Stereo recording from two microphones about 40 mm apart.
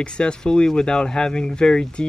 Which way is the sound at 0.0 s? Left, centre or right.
Left.